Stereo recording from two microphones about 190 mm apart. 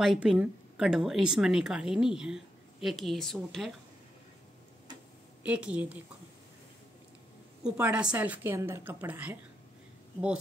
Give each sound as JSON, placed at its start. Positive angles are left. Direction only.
{"t": 0.0, "sound": "speech", "side_deg": 0}
{"t": 5.4, "sound": "a woman's voice", "side_deg": -5}
{"t": 7.6, "sound": "a woman's voice", "side_deg": -5}